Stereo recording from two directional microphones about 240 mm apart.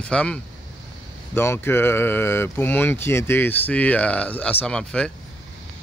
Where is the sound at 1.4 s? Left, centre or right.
Centre.